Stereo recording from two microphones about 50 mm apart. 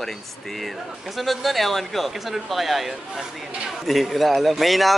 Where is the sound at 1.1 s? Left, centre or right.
Centre.